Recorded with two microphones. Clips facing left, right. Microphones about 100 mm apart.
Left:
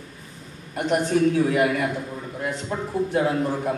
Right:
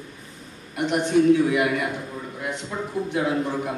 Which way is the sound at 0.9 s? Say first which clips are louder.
Right 2 dB; 45° left (ahead or behind).